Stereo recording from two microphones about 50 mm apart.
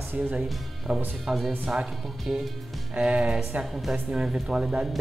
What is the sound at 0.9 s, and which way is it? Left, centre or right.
Speech, right.